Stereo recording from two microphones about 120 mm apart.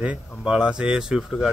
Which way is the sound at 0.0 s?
10° right (ahead or behind).